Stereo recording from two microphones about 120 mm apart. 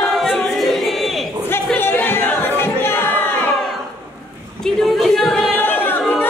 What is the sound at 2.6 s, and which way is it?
Crowd, 20° left (ahead or behind).